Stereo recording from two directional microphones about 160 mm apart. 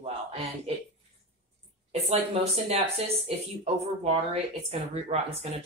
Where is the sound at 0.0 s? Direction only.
40° right (ahead or behind).